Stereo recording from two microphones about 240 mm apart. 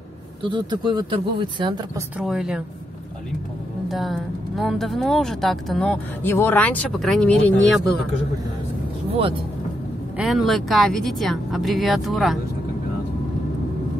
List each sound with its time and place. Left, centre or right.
0.4 s speech: centre
2.1 s speech: centre
3.9 s speech: centre
10.1 s speech: centre